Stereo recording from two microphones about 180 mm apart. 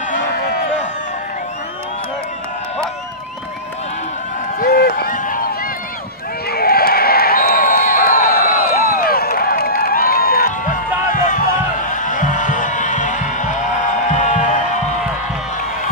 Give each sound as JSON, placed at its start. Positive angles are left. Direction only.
{"t": 4.6, "sound": "run", "side_deg": 55}
{"t": 6.5, "sound": "crowd", "side_deg": 60}
{"t": 11.2, "sound": "music", "side_deg": 45}